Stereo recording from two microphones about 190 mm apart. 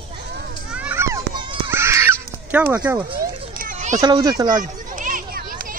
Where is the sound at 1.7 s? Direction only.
15° right (ahead or behind).